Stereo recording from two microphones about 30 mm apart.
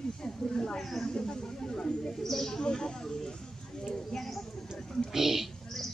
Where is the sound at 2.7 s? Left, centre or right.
Centre.